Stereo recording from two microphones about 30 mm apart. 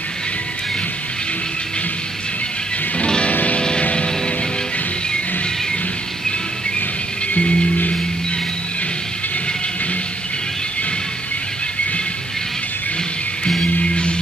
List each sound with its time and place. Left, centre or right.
7.3 s music: left